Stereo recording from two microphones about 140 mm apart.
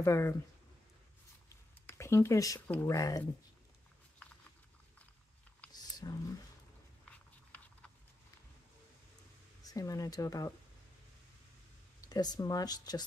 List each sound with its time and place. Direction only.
0.0 s speech: 20° left (ahead or behind)
1.9 s speech: 20° left (ahead or behind)
5.7 s a sound: 30° left (ahead or behind)
9.6 s speech: 25° left (ahead or behind)
12.0 s speech: 30° left (ahead or behind)